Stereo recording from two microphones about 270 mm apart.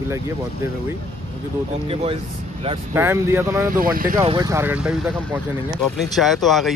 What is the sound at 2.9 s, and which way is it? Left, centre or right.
Speech, centre.